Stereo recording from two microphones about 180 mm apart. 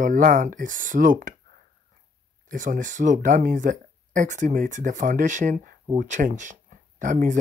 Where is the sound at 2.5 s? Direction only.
45° right (ahead or behind).